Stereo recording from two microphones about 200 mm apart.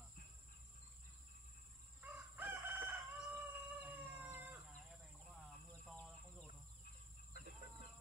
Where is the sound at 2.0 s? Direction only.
10° right (ahead or behind).